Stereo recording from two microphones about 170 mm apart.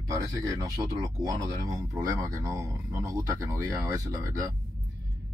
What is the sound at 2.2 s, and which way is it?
Speech, 20° right (ahead or behind).